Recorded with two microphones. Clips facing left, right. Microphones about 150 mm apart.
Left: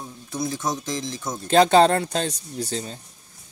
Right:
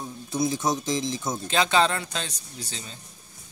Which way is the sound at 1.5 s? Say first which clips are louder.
Left 8 dB; 45° left (ahead or behind).